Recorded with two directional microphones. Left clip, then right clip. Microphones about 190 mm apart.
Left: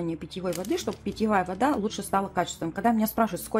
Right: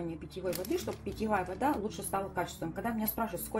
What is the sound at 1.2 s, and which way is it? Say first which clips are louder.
A woman's voice: left 7 dB; 60° left (ahead or behind).